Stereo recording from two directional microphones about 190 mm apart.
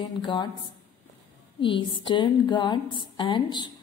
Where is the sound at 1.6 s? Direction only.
25° left (ahead or behind).